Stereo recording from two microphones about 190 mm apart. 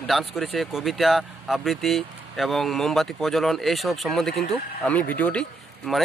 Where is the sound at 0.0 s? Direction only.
Centre (ahead or behind).